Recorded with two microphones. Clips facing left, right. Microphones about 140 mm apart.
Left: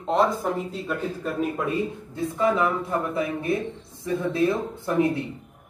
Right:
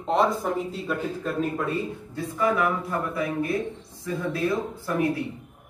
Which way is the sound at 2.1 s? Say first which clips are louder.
Left 2 dB; 25° left (ahead or behind).